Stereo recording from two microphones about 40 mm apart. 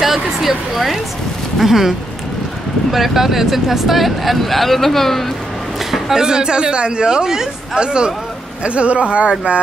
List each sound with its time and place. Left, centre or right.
0.0 s speech: centre
5.9 s speech: centre; by 9.6 s right